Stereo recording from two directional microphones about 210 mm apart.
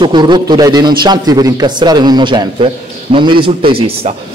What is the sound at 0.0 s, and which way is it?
A man's voice, 20° right (ahead or behind).